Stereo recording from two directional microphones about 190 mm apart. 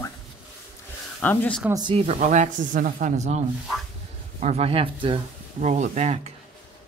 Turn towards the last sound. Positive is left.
turn(degrees=-35)  # may be behind; listen again after turning